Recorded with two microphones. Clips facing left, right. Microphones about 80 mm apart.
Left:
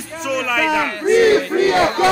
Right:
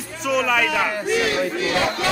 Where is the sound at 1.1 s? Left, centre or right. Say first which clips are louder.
Left 8 dB; left.